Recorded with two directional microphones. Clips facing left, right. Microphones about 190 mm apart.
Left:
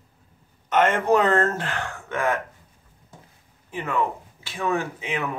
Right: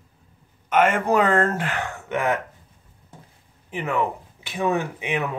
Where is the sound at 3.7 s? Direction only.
15° right (ahead or behind).